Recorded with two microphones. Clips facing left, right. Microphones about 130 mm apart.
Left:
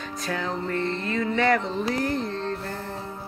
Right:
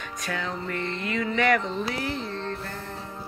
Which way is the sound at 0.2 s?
35° left (ahead or behind).